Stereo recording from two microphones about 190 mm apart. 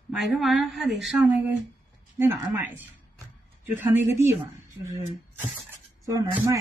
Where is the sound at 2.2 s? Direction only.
10° right (ahead or behind).